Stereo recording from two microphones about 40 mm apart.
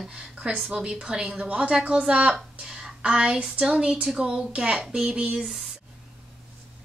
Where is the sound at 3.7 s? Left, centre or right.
Right.